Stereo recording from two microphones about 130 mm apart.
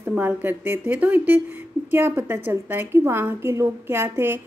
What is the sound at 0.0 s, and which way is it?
Speech, 15° right (ahead or behind).